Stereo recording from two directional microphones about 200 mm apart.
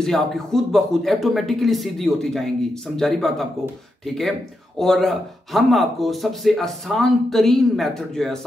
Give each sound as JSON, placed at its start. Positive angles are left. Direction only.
{"t": 0.0, "sound": "speech", "side_deg": 0}